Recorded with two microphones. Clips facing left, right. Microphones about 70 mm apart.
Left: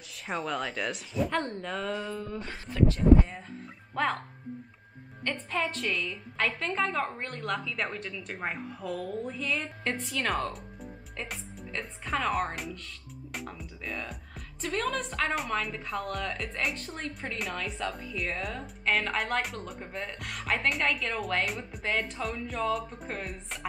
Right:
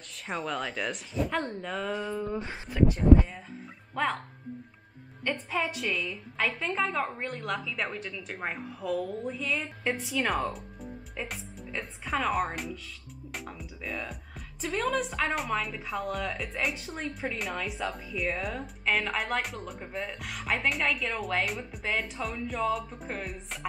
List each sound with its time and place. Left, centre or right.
0.1 s speech: centre
2.2 s speech: centre
3.0 s speech: centre
5.2 s speech: centre